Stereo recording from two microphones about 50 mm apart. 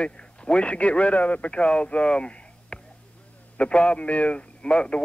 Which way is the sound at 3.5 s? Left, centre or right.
Left.